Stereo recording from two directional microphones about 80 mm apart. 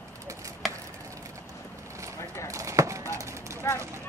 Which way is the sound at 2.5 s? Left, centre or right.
Right.